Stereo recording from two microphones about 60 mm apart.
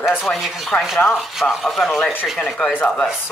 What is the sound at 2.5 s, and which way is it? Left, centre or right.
Speech, left.